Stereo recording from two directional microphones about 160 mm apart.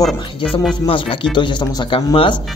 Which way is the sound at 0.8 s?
30° left (ahead or behind).